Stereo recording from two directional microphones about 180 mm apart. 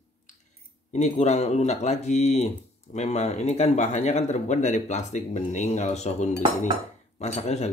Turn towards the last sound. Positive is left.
turn(degrees=40)  # may be behind; listen again after turning